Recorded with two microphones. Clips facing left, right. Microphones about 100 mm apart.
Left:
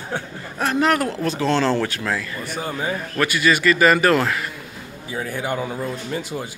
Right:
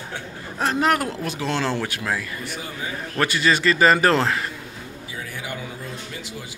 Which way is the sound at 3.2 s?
30° right (ahead or behind).